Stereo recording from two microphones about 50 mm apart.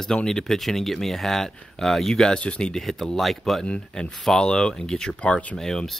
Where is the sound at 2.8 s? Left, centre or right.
Centre.